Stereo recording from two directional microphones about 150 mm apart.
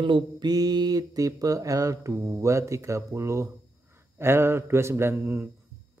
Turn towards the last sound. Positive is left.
turn(degrees=-15)  # may be behind; listen again after turning